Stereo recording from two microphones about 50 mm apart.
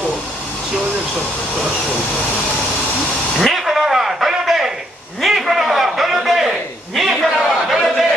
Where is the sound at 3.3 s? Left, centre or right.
Centre.